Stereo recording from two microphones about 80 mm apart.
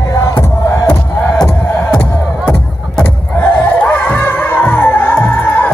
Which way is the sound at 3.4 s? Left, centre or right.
Left.